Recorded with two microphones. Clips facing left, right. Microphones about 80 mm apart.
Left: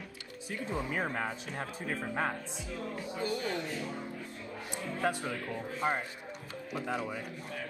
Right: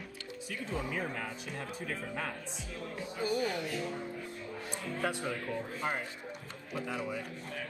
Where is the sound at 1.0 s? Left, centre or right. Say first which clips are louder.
Left 4 dB; left.